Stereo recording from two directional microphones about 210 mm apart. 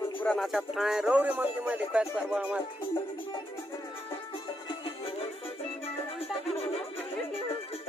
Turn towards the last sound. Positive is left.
turn(degrees=30)  # may be behind; listen again after turning